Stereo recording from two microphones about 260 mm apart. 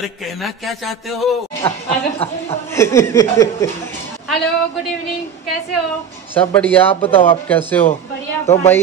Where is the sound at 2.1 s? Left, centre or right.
Left.